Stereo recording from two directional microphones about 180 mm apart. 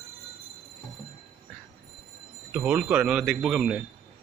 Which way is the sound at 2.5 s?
10° right (ahead or behind).